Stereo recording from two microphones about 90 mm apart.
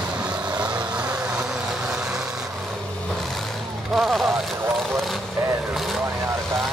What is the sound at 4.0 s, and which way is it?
Speech, 5° right (ahead or behind).